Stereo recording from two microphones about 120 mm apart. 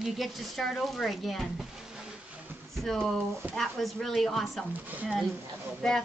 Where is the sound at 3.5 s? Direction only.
Centre (ahead or behind).